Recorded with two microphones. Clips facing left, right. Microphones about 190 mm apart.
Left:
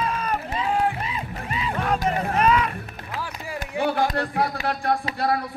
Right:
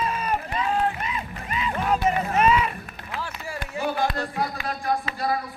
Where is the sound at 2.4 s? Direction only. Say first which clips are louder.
Even; 5° right (ahead or behind).